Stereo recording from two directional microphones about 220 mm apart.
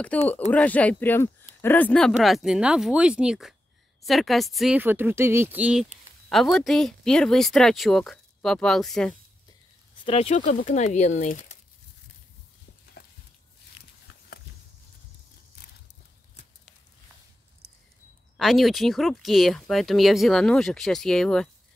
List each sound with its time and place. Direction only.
0.1 s speech: 5° left (ahead or behind)
10.0 s speech: 25° left (ahead or behind)
18.4 s speech: centre (ahead or behind)